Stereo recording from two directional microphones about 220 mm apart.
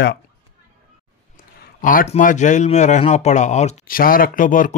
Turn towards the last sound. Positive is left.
turn(degrees=35)  # may be behind; listen again after turning